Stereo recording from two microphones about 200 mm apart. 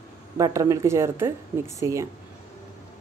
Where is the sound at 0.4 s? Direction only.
15° right (ahead or behind).